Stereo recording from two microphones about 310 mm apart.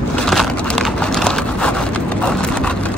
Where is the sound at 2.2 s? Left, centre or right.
Centre.